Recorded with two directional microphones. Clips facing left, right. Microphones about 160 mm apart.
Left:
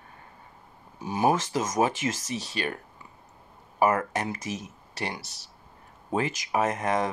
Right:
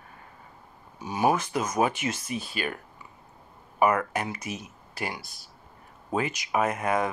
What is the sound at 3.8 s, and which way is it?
Speech, 25° left (ahead or behind).